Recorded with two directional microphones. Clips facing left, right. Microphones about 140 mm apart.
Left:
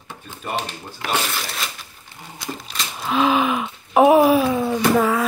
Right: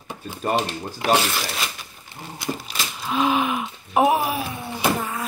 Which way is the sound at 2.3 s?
5° right (ahead or behind).